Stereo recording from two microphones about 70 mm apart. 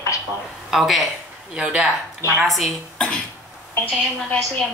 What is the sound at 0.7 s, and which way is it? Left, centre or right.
Speech, centre.